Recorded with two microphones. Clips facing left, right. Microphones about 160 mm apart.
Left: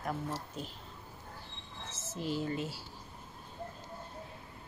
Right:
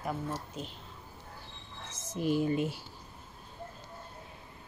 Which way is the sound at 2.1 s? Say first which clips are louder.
Right 6 dB; 15° right (ahead or behind).